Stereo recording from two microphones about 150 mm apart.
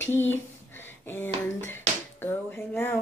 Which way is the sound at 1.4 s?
15° left (ahead or behind).